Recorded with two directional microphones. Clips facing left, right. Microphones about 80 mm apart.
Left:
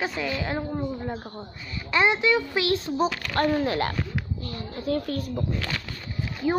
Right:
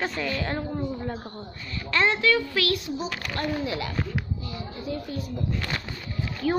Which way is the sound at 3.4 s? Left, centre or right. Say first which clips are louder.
Left 6 dB; left.